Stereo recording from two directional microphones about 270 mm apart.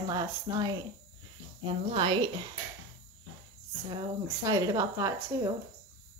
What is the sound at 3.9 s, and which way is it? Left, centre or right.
A woman's voice, centre.